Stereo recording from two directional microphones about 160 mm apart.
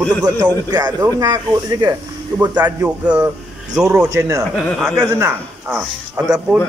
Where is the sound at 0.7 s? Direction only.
25° right (ahead or behind).